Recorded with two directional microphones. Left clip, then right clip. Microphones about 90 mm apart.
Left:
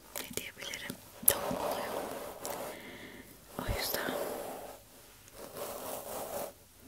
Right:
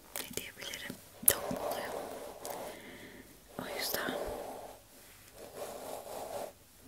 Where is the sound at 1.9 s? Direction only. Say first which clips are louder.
Left 3 dB; 40° left (ahead or behind).